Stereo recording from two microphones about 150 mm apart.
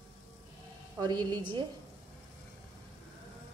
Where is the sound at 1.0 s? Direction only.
25° right (ahead or behind).